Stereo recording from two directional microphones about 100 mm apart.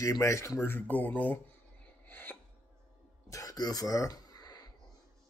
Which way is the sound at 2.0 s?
20° left (ahead or behind).